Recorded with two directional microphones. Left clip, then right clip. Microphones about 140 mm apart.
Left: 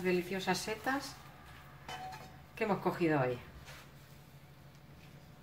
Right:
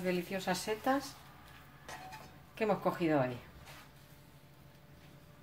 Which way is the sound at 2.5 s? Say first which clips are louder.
Right 1 dB; 60° right (ahead or behind).